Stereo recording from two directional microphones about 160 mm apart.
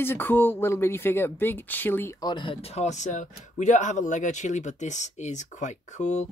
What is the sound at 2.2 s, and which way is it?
Speech, 30° left (ahead or behind).